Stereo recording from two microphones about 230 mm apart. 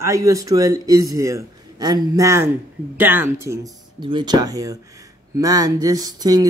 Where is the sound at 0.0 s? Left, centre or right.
Centre.